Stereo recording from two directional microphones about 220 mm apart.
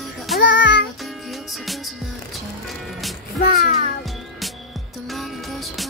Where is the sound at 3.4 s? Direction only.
45° left (ahead or behind).